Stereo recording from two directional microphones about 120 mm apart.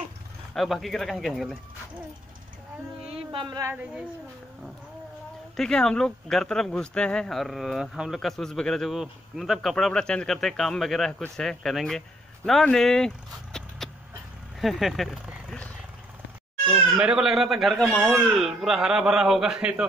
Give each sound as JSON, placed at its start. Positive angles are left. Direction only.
{"t": 0.6, "sound": "speech", "side_deg": 0}
{"t": 3.1, "sound": "a sound", "side_deg": -50}
{"t": 3.7, "sound": "speech", "side_deg": -10}
{"t": 5.6, "sound": "speech", "side_deg": 5}
{"t": 16.9, "sound": "speech", "side_deg": -5}